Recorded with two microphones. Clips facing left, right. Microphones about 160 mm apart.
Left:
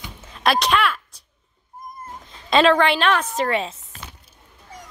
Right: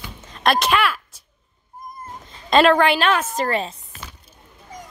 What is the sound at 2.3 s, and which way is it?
A woman's voice, centre (ahead or behind).